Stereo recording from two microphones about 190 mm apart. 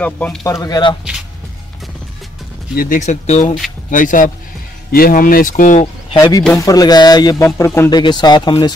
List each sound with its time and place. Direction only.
0.0 s speech: 5° left (ahead or behind)
0.4 s speech: 15° left (ahead or behind)
2.7 s speech: 50° left (ahead or behind)
6.1 s speech: 15° left (ahead or behind)